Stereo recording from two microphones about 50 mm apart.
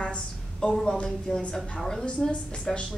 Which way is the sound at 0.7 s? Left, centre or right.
Centre.